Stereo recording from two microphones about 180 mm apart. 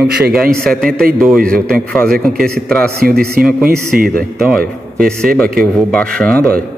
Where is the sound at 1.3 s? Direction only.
50° right (ahead or behind).